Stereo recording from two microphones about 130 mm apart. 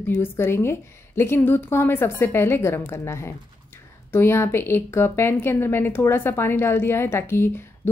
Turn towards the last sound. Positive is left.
turn(degrees=15)  # may be behind; listen again after turning